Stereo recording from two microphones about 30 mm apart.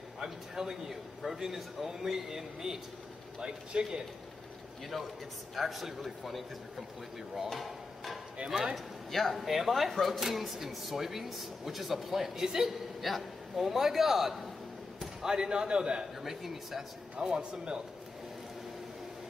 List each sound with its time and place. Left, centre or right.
0.2 s a man's voice: centre
3.3 s a man's voice: right
5.6 s a man's voice: centre
7.5 s a sound: centre
8.4 s speech: right
8.7 s speech: centre
9.5 s a man's voice: centre
9.8 s a man's voice: centre
10.2 s a man's voice: centre
12.4 s a man's voice: centre
13.0 s a man's voice: centre
15.2 s a man's voice: right
16.2 s a man's voice: centre
17.4 s a man's voice: right